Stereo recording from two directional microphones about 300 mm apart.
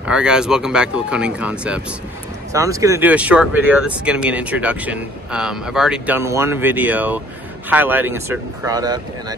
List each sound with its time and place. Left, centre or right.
0.0 s speech: centre